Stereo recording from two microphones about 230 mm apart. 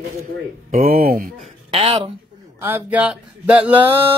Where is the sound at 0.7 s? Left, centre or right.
Right.